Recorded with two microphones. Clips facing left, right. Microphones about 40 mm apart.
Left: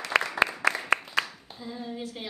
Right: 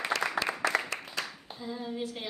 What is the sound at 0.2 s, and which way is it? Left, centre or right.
Applause, left.